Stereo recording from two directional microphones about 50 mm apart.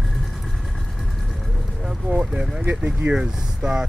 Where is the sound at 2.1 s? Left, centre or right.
Centre.